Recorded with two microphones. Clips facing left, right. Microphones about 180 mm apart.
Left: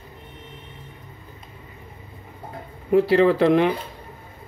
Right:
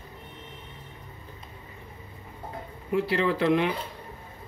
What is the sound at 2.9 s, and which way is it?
Speech, 40° left (ahead or behind).